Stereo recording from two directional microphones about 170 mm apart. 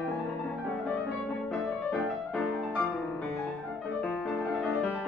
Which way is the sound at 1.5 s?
5° left (ahead or behind).